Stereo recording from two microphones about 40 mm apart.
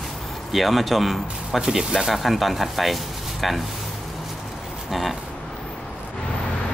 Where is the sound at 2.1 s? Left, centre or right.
Centre.